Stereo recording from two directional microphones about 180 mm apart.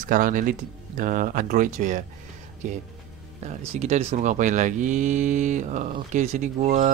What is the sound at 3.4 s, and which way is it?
Speech, 40° right (ahead or behind).